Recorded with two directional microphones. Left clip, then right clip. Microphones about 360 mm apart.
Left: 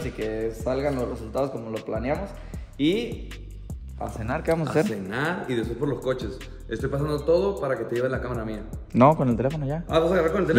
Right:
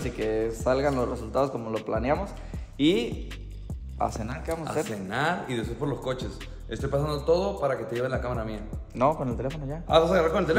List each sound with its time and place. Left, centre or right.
0.0 s speech: centre
4.6 s speech: centre
8.9 s speech: left
9.5 s speech: centre